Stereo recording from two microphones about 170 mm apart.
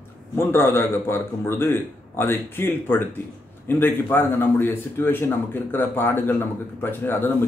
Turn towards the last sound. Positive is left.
turn(degrees=10)  # may be behind; listen again after turning